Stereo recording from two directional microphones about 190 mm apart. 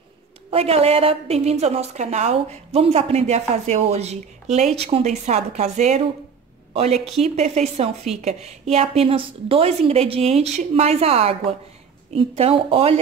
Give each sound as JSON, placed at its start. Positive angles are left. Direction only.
{"t": 0.5, "sound": "a woman's voice", "side_deg": -30}